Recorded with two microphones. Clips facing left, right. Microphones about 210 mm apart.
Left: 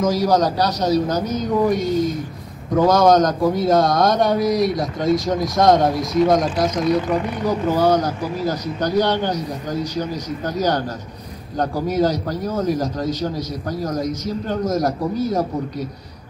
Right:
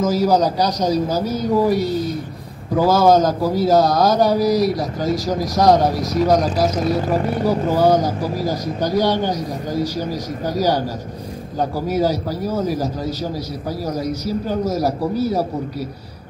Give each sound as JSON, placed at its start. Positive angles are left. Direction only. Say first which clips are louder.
{"t": 0.0, "sound": "a man's voice", "louder": "right 1 dB", "side_deg": -5}
{"t": 7.2, "sound": "speech", "louder": "right 3 dB", "side_deg": -40}
{"t": 7.4, "sound": "a man's voice", "louder": "right 1 dB", "side_deg": -10}
{"t": 11.7, "sound": "a man's voice", "louder": "even", "side_deg": -5}